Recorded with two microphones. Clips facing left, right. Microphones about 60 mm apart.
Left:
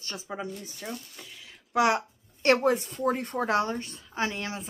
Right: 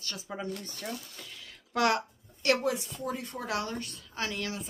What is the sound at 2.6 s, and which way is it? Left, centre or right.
A woman's voice, left.